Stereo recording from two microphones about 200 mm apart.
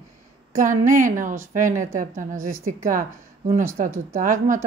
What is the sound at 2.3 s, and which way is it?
Speech, 90° right.